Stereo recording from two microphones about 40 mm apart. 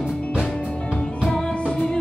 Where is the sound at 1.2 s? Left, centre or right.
Centre.